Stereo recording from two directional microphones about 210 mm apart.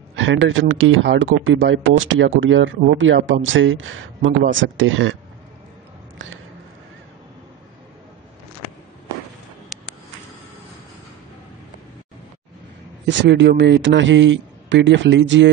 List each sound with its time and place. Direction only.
0.1 s a man's voice: 65° right (ahead or behind)
6.1 s a sound: 65° right (ahead or behind)
13.0 s a man's voice: 55° right (ahead or behind)